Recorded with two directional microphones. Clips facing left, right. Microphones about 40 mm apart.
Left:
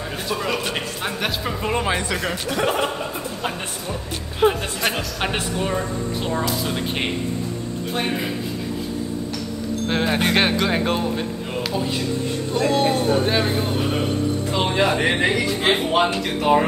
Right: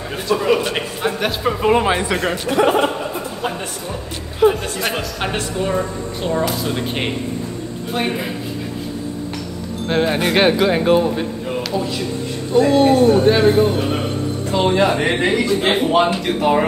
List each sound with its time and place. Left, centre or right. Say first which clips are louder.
0.3 s speech: right 8 dB; centre
1.5 s speech: right 9 dB; centre
4.4 s speech: right 4 dB; left
4.8 s speech: even; centre
7.9 s speech: right 3 dB; centre
9.8 s speech: right 4 dB; centre
12.5 s speech: right 7 dB; centre
14.5 s speech: right 6 dB; centre